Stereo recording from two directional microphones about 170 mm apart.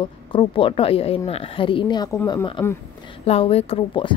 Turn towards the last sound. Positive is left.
turn(degrees=30)  # may be behind; listen again after turning